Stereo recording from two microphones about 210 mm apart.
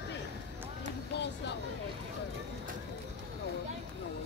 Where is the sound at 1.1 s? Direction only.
55° left (ahead or behind).